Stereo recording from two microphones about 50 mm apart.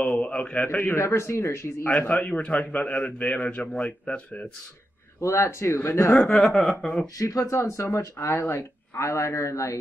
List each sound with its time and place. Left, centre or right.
0.0 s a sound: left
0.7 s speech: left
0.9 s speech: left
2.0 s a man's voice: left
5.2 s speech: left
5.9 s speech: left
6.1 s speech: centre
7.4 s speech: left